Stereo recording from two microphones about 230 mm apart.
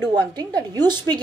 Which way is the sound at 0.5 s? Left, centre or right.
Centre.